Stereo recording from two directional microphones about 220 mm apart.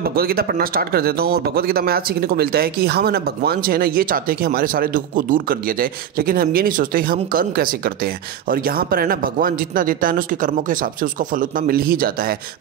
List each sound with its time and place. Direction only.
0.0 s speech: 45° right (ahead or behind)